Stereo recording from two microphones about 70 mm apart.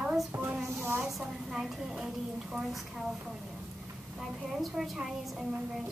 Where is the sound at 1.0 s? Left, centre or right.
Centre.